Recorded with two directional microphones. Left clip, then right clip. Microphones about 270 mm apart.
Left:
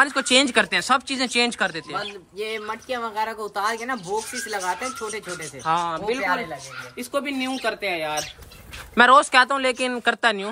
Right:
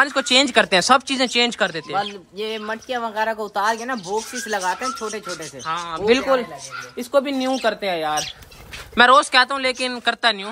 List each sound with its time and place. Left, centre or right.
0.0 s speech: centre
5.7 s speech: centre
6.0 s speech: right
7.0 s speech: centre
8.9 s speech: centre